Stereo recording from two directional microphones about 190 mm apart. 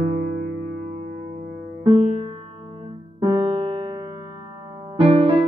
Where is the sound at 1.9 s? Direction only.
30° right (ahead or behind).